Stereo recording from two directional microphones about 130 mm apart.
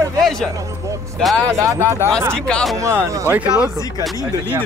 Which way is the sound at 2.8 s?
25° right (ahead or behind).